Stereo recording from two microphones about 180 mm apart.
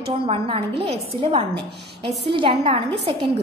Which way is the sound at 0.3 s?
30° right (ahead or behind).